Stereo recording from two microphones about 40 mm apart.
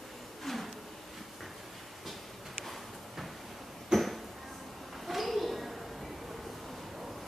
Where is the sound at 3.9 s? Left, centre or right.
Centre.